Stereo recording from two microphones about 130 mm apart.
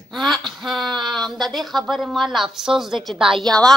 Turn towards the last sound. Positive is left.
turn(degrees=5)  # may be behind; listen again after turning